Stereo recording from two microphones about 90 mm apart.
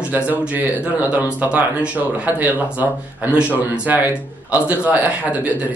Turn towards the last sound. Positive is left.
turn(degrees=-15)  # may be behind; listen again after turning